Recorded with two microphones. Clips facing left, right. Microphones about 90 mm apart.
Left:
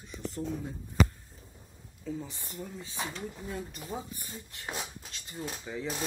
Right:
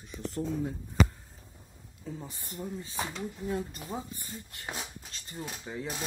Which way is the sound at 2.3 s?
45° right (ahead or behind).